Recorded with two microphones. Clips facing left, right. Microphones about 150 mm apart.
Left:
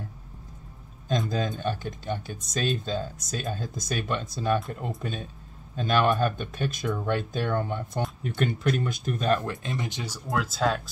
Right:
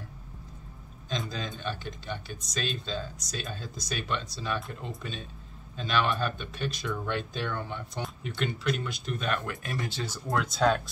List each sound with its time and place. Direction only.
1.6 s speech: 45° left (ahead or behind)
9.5 s speech: 25° left (ahead or behind)
10.2 s speech: centre (ahead or behind)